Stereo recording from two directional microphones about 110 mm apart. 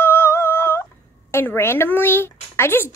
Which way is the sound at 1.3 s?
20° left (ahead or behind).